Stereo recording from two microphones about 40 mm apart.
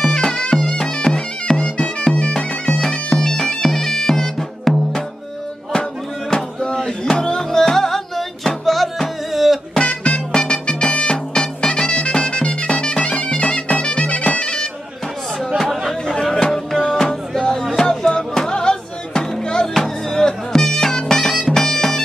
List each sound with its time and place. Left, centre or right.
0.1 s bagpipes: centre
2.6 s bagpipes: centre
6.3 s a sound: centre
7.4 s music: centre
9.8 s music: left
16.2 s music: left